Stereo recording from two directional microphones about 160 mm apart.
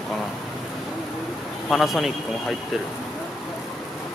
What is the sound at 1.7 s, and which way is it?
Speech, centre (ahead or behind).